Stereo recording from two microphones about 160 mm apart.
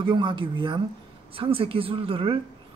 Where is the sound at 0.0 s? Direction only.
30° right (ahead or behind).